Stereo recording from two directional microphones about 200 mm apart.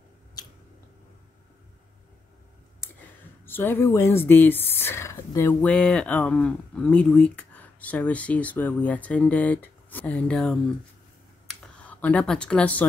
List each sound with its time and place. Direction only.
3.0 s speech: 10° left (ahead or behind)
11.6 s speech: 5° left (ahead or behind)